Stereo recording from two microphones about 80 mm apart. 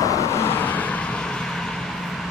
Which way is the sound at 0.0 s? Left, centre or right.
Left.